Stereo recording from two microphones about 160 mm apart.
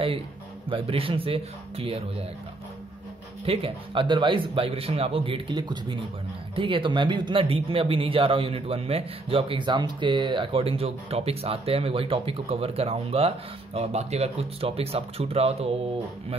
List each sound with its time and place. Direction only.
0.7 s speech: 35° right (ahead or behind)
3.4 s speech: 35° right (ahead or behind)